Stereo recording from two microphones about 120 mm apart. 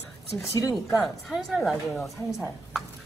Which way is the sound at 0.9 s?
Centre (ahead or behind).